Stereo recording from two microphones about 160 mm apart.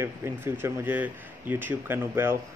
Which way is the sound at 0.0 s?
15° right (ahead or behind).